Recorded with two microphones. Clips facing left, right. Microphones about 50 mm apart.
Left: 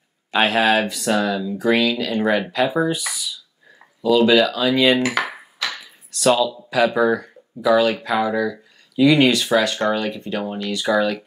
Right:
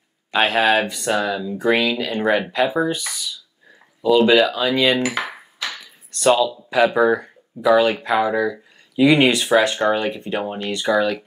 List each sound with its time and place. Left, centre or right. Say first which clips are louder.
0.3 s speech: even; centre
3.0 s speech: left 1 dB; centre
4.3 s speech: even; centre
10.8 s speech: even; centre